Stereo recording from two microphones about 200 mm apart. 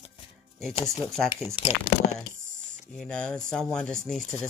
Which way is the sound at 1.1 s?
Centre (ahead or behind).